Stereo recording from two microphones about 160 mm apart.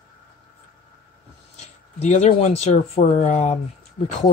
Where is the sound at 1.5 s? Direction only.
45° left (ahead or behind).